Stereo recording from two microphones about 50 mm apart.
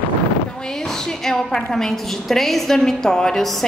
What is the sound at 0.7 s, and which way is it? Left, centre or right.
A woman's voice, centre.